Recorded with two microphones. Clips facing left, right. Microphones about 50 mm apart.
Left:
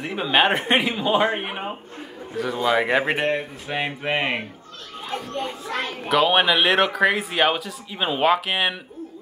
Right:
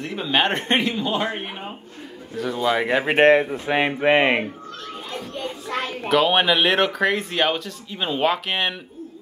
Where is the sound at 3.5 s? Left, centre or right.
Right.